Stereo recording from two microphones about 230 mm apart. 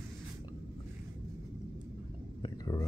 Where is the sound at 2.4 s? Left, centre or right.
Centre.